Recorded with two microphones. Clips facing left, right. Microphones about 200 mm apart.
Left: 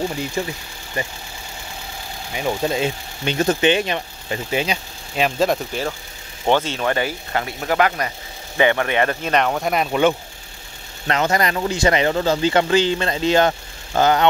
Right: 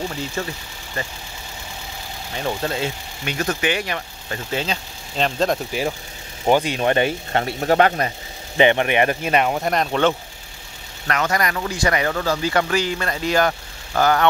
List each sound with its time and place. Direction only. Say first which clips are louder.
0.4 s speech: left 2 dB; 15° left (ahead or behind)
2.3 s speech: left 3 dB; 10° left (ahead or behind)
3.3 s speech: left 5 dB; 25° left (ahead or behind); by 5.6 s 5° left (ahead or behind)
5.7 s speech: right 1 dB; 10° right (ahead or behind)
6.8 s speech: right 3 dB; 25° right (ahead or behind)
9.3 s speech: even; 5° right (ahead or behind)
11.1 s speech: left 2 dB; 25° left (ahead or behind)